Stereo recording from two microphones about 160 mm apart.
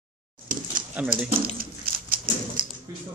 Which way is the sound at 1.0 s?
10° right (ahead or behind).